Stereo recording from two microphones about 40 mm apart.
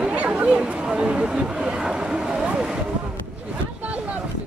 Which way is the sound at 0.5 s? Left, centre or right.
Right.